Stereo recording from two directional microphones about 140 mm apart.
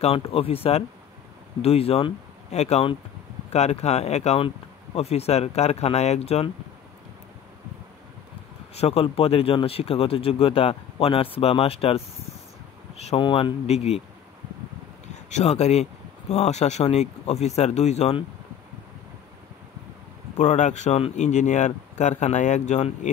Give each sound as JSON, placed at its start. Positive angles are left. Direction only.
{"t": 0.0, "sound": "speech", "side_deg": 45}
{"t": 8.7, "sound": "speech", "side_deg": 45}
{"t": 15.2, "sound": "speech", "side_deg": 55}
{"t": 20.3, "sound": "speech", "side_deg": 55}